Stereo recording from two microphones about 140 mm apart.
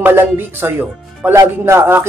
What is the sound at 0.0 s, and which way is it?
A man's voice, 15° right (ahead or behind).